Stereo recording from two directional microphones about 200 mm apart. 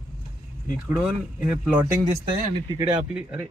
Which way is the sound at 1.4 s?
5° right (ahead or behind).